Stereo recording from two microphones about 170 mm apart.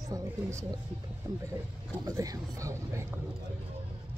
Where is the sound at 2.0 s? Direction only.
20° right (ahead or behind).